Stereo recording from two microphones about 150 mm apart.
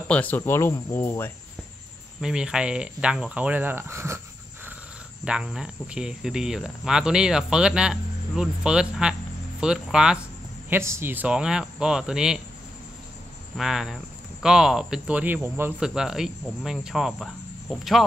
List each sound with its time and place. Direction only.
0.1 s speech: 10° left (ahead or behind)
2.2 s speech: 5° right (ahead or behind)
5.2 s speech: 5° right (ahead or behind)
10.7 s speech: 15° right (ahead or behind)
13.6 s speech: 5° right (ahead or behind)
15.8 s speech: 5° right (ahead or behind)